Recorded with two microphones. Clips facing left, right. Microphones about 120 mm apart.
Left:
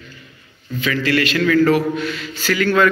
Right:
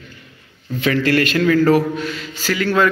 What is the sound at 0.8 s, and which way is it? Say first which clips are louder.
Speech: right 2 dB; 50° right (ahead or behind).